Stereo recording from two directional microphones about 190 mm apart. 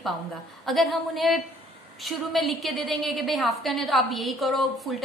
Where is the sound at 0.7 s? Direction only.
Centre (ahead or behind).